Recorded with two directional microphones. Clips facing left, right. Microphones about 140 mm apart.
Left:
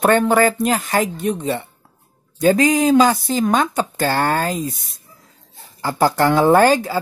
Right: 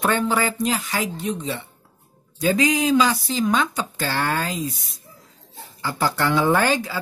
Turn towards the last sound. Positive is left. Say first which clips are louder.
# left 7 dB
turn(degrees=45)  # may be behind; listen again after turning